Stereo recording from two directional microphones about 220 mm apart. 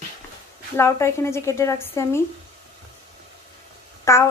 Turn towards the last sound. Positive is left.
turn(degrees=15)  # may be behind; listen again after turning